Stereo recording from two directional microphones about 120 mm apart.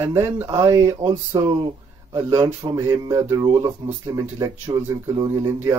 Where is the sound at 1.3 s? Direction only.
40° right (ahead or behind).